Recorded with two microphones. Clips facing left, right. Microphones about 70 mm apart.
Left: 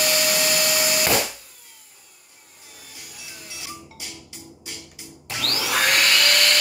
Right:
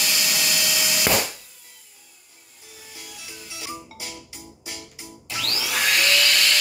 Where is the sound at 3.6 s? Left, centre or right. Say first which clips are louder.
Right 5 dB; right.